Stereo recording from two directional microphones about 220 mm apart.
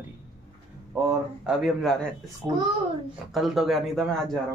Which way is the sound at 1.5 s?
Centre (ahead or behind).